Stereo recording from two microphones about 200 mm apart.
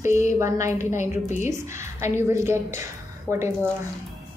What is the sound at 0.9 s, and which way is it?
Speech, 35° left (ahead or behind).